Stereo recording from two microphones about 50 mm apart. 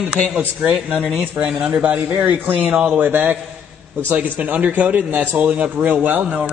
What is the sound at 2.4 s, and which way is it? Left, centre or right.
Speech, right.